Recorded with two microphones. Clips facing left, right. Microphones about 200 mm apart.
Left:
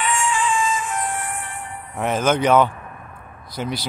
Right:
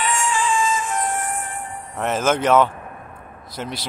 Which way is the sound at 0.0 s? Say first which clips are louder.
Even; 40° right (ahead or behind).